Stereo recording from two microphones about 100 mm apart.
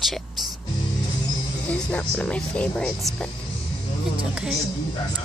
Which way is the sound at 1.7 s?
15° left (ahead or behind).